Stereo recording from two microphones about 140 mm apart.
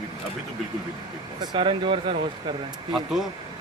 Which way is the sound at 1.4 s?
35° right (ahead or behind).